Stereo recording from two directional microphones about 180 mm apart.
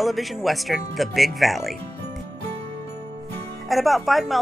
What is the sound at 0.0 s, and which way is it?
Speech, centre (ahead or behind).